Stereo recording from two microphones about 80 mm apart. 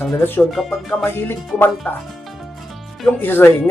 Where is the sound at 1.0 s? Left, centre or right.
Left.